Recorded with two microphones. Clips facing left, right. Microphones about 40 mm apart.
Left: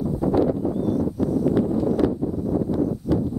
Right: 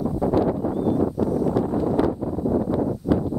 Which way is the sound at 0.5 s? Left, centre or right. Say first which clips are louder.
Right 1 dB; right.